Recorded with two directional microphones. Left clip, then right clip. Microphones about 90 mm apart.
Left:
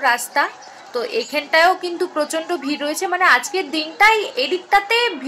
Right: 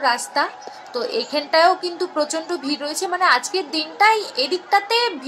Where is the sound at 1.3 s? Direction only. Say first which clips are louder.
Left 1 dB; 15° left (ahead or behind).